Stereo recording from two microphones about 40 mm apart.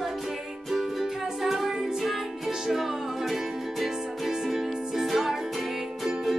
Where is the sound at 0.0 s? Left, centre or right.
Centre.